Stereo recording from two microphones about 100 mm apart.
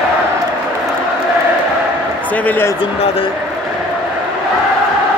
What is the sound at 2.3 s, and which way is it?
Speech, 15° left (ahead or behind).